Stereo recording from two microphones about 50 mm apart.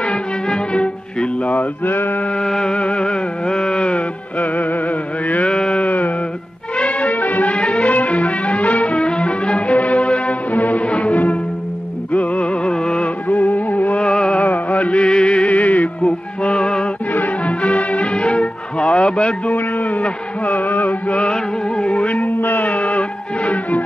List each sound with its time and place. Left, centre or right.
0.0 s music: left
2.0 s mantra: left
2.3 s music: centre
4.4 s music: left
5.5 s sheep: left
6.8 s music: left
7.5 s music: left
13.3 s music: left
14.0 s music: centre
14.4 s music: left
17.1 s music: left
21.2 s music: left